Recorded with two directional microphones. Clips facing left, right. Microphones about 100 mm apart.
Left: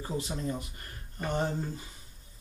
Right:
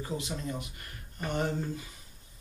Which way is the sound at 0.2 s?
35° left (ahead or behind).